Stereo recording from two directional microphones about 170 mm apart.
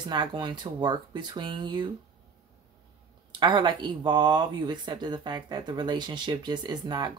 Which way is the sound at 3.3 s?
25° right (ahead or behind).